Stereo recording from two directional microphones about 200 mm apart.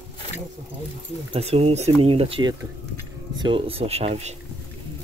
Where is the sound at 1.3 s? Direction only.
30° right (ahead or behind).